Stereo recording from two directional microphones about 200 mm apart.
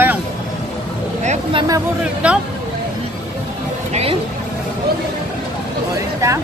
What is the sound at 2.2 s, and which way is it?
Speech, 5° right (ahead or behind).